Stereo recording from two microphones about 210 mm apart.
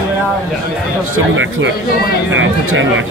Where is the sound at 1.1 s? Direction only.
65° right (ahead or behind).